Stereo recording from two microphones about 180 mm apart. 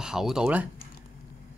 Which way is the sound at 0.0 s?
5° right (ahead or behind).